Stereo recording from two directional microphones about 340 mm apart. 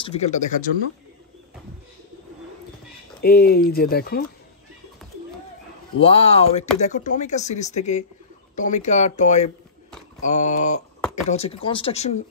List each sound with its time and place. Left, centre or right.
0.0 s speech: centre
3.2 s speech: left
5.9 s speech: centre
11.0 s a sound: centre
11.2 s speech: centre